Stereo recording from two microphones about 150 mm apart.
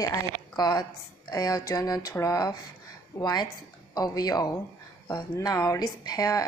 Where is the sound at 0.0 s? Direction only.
25° left (ahead or behind).